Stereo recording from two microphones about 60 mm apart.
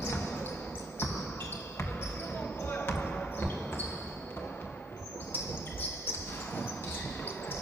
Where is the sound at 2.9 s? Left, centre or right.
Left.